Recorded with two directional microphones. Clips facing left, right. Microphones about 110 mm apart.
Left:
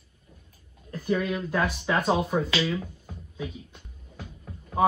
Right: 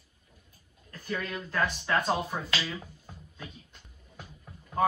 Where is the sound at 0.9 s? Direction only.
15° left (ahead or behind).